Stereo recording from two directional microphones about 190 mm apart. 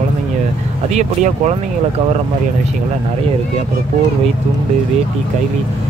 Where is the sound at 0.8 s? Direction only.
35° right (ahead or behind).